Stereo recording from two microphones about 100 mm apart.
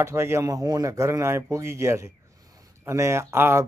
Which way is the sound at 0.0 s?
25° right (ahead or behind).